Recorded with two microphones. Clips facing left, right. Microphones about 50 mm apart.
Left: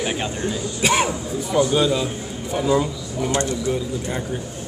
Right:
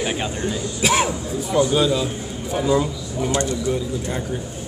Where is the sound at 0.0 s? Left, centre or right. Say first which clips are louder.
Even; centre.